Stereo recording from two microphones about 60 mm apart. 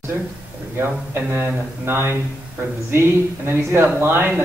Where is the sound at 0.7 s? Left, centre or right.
Right.